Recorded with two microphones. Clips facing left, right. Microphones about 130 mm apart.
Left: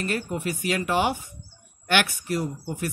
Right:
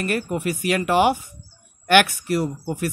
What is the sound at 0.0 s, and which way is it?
Speech, 60° right (ahead or behind).